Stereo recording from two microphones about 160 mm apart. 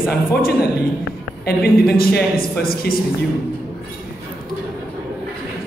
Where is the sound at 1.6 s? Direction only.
75° left (ahead or behind).